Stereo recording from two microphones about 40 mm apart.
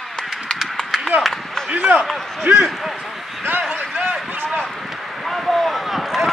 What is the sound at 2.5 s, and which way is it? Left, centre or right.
Speech, right.